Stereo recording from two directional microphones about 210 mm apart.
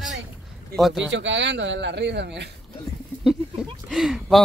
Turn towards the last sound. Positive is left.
turn(degrees=0)  # may be behind; listen again after turning